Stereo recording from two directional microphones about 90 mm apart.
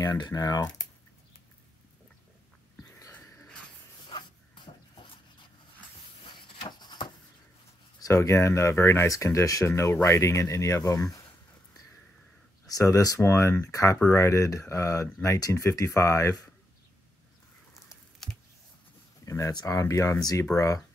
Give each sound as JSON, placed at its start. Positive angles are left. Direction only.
{"t": 0.0, "sound": "speech", "side_deg": 40}
{"t": 4.1, "sound": "dog", "side_deg": 65}
{"t": 6.4, "sound": "a sound", "side_deg": 55}
{"t": 8.0, "sound": "speech", "side_deg": 35}
{"t": 12.6, "sound": "speech", "side_deg": 40}
{"t": 18.2, "sound": "a sound", "side_deg": 5}
{"t": 19.2, "sound": "speech", "side_deg": 35}